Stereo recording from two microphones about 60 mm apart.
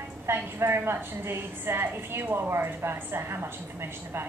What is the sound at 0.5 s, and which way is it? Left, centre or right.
A woman's voice, right.